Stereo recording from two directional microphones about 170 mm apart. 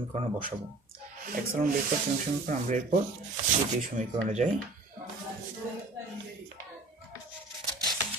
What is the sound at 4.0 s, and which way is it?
Speech, 45° right (ahead or behind).